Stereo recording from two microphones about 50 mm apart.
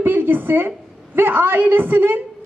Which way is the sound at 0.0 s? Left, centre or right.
Right.